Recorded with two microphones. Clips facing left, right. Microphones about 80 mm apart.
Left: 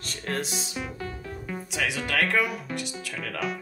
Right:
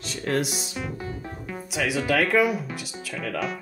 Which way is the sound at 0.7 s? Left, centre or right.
Centre.